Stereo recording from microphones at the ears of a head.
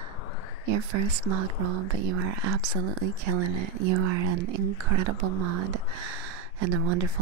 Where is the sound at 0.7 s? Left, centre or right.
Right.